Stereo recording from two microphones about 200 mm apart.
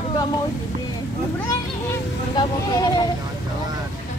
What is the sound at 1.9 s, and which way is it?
Vehicle, 20° left (ahead or behind).